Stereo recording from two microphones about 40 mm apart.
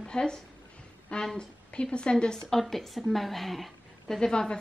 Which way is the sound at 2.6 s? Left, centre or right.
Centre.